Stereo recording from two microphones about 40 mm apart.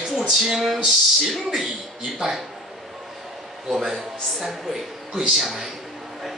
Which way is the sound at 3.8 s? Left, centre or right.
Centre.